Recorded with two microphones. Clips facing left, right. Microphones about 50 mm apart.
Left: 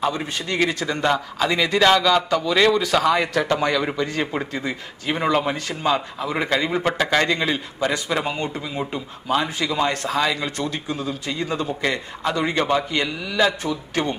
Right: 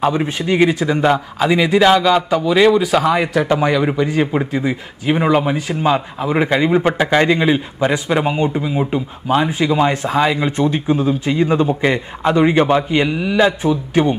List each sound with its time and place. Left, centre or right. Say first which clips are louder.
0.0 s a man's voice: right 7 dB; right